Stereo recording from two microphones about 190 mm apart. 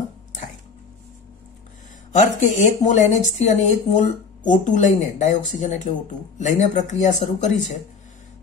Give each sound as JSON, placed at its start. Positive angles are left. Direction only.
{"t": 2.1, "sound": "speech", "side_deg": 40}